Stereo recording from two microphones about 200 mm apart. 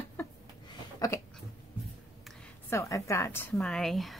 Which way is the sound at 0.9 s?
15° left (ahead or behind).